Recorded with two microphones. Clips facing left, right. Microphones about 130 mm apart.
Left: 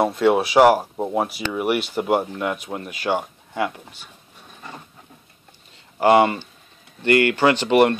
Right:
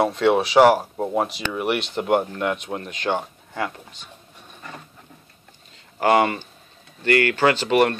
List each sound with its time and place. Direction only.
0.0 s speech: 10° left (ahead or behind)
7.0 s speech: 15° left (ahead or behind)